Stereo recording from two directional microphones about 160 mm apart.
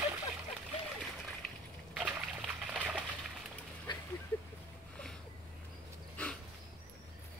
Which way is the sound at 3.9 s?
30° left (ahead or behind).